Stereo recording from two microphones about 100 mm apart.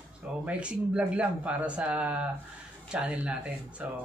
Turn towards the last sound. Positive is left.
turn(degrees=-10)  # may be behind; listen again after turning